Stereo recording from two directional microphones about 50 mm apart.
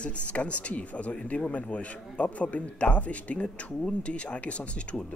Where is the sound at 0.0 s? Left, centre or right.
Left.